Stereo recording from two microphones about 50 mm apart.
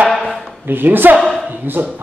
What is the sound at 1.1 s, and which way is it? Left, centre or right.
Speech, centre.